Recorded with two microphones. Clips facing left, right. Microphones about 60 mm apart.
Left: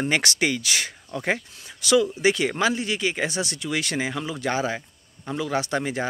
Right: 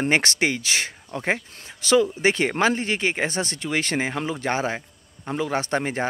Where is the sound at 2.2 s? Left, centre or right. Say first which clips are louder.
Right 1 dB; right.